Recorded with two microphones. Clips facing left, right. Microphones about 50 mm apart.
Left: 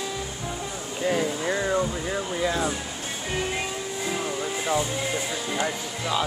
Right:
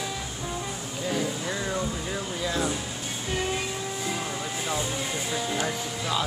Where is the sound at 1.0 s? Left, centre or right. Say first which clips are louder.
Left 5 dB; left.